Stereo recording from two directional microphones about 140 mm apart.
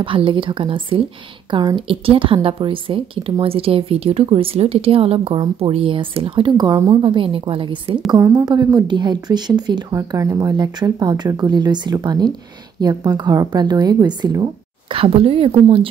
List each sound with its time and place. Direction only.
0.0 s a woman's voice: 40° right (ahead or behind)
8.2 s a woman's voice: 25° right (ahead or behind); by 15.9 s 40° right (ahead or behind)